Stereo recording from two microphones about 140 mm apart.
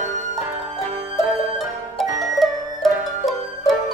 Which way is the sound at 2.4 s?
Centre (ahead or behind).